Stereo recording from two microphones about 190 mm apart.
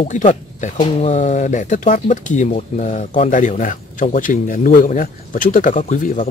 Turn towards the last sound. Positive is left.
turn(degrees=40)  # may be behind; listen again after turning